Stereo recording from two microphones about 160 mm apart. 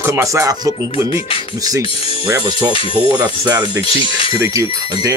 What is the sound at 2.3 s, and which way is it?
Music, 25° right (ahead or behind).